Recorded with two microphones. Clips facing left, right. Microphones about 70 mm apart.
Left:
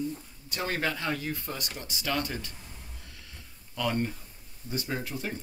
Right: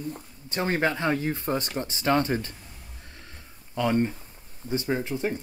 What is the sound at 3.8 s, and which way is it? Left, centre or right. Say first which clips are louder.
Speech: right 6 dB; right.